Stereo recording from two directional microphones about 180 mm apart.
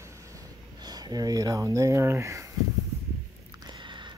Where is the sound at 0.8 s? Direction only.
25° right (ahead or behind).